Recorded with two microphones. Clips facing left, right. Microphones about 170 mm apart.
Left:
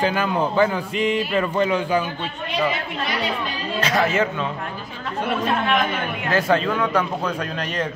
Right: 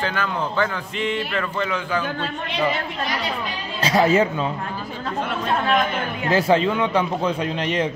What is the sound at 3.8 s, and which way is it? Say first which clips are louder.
Speech: right 3 dB; 30° right (ahead or behind).